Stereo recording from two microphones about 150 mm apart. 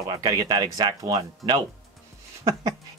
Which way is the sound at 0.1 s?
25° right (ahead or behind).